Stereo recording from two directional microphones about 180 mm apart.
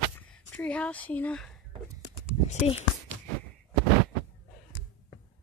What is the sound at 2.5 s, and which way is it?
Speech, 35° left (ahead or behind).